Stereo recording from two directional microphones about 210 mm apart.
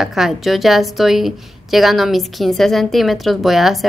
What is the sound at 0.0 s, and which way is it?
A woman's voice, centre (ahead or behind).